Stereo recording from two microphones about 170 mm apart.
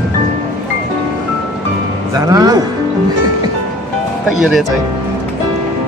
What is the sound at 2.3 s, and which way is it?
Speech, 20° right (ahead or behind).